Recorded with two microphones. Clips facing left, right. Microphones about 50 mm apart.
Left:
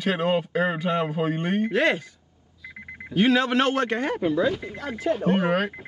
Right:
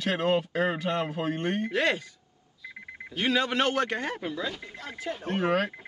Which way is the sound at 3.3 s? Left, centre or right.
Centre.